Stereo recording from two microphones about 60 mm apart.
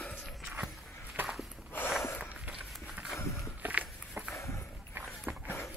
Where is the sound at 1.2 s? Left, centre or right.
Right.